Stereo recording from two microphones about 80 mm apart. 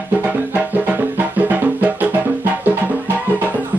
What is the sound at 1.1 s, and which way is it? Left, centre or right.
Music, right.